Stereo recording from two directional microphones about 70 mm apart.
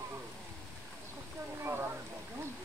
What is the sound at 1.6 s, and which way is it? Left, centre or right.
Rain, right.